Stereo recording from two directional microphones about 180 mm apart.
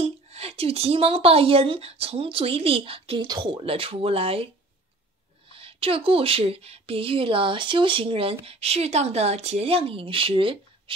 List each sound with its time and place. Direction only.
0.0 s a woman's voice: 35° right (ahead or behind)
5.5 s a woman's voice: 30° right (ahead or behind)